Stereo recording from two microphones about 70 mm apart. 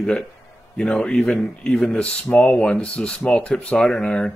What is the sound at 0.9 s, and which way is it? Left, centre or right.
Speech, centre.